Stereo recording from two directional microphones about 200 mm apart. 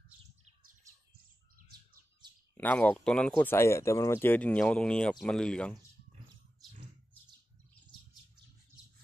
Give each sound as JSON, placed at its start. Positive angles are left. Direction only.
{"t": 0.8, "sound": "bird", "side_deg": -15}
{"t": 2.5, "sound": "speech", "side_deg": 10}